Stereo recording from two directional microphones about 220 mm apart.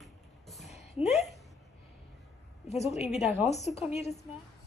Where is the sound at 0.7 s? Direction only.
30° left (ahead or behind).